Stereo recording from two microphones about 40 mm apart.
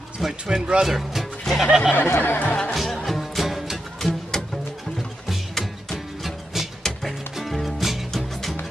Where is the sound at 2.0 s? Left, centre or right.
Left.